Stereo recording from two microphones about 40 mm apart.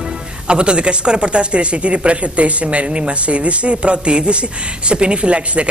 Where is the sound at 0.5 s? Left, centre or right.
Right.